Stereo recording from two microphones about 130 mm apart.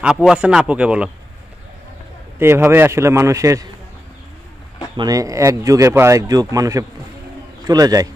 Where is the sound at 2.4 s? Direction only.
20° right (ahead or behind).